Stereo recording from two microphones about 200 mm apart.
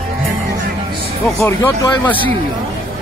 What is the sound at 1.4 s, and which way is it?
Speech, 15° left (ahead or behind).